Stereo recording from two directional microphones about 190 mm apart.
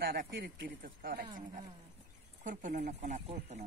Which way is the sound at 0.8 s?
50° right (ahead or behind).